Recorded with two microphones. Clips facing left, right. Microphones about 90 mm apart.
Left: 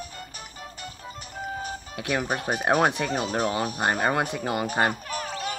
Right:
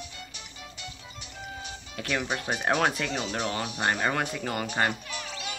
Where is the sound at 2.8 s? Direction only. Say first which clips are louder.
Left 4 dB; 20° left (ahead or behind).